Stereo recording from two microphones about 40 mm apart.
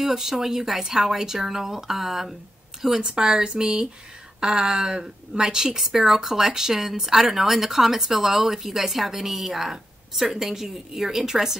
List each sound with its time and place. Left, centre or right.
0.0 s a woman's voice: centre